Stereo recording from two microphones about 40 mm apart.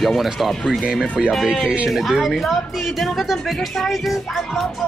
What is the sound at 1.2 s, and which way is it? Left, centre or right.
Speech, centre.